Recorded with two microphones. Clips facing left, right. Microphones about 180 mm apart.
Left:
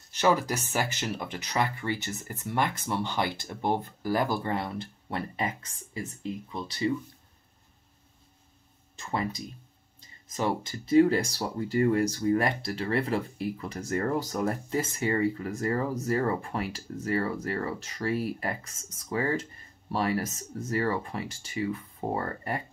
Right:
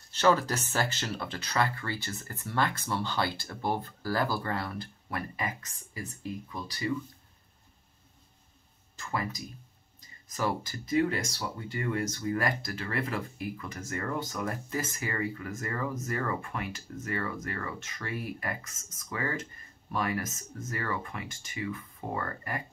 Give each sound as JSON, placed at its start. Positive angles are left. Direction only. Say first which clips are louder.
{"t": 0.1, "sound": "speech", "louder": "even", "side_deg": 15}
{"t": 8.9, "sound": "speech", "louder": "left 3 dB", "side_deg": 25}